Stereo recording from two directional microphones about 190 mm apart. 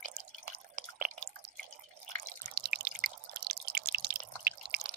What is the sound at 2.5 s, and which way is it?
Drip, 55° right (ahead or behind).